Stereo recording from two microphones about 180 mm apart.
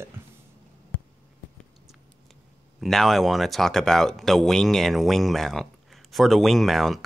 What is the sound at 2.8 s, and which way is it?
Speech, centre (ahead or behind).